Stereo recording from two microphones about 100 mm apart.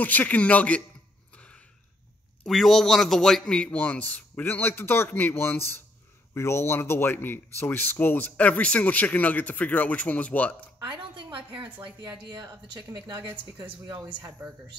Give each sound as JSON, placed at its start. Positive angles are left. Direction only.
{"t": 0.0, "sound": "speech", "side_deg": 15}
{"t": 1.3, "sound": "a sound", "side_deg": 10}
{"t": 2.4, "sound": "speech", "side_deg": 5}
{"t": 10.8, "sound": "a woman's voice", "side_deg": -50}
{"t": 12.3, "sound": "a woman's voice", "side_deg": -40}
{"t": 14.0, "sound": "speech", "side_deg": -20}